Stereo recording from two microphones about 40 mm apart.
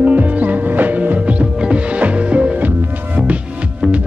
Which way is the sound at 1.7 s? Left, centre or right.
Right.